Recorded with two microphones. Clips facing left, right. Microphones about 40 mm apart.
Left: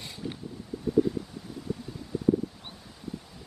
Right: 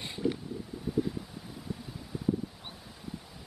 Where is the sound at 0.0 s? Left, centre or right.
Right.